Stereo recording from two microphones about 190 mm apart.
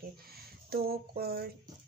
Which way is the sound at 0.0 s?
55° right (ahead or behind).